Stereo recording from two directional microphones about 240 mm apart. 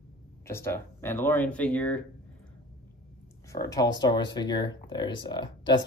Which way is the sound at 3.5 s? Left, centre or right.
Centre.